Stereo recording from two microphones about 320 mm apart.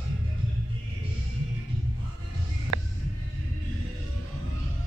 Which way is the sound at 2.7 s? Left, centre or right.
Right.